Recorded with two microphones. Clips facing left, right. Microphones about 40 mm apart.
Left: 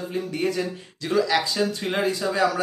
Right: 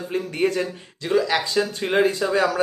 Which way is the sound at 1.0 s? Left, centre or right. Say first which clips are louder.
Right 1 dB; centre.